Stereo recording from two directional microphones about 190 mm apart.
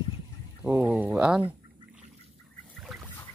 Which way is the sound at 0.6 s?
10° right (ahead or behind).